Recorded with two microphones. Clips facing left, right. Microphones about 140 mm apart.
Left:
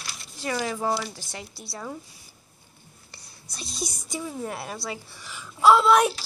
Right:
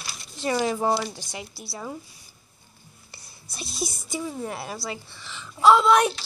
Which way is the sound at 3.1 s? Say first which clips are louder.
Right 1 dB; 10° right (ahead or behind).